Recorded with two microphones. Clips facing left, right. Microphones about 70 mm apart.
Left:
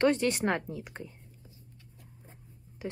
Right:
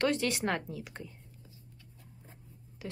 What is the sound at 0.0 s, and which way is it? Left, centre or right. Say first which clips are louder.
Speech: left 4 dB; left.